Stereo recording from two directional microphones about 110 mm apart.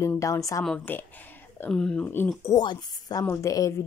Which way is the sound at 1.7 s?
5° left (ahead or behind).